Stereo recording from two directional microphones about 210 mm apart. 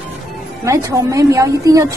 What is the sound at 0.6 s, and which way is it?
A woman's voice, 15° right (ahead or behind).